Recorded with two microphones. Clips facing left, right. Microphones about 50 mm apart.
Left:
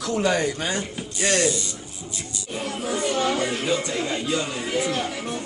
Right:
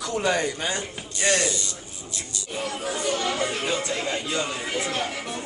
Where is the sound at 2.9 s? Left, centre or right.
Left.